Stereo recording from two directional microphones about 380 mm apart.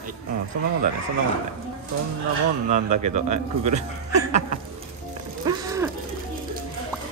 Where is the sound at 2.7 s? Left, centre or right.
Centre.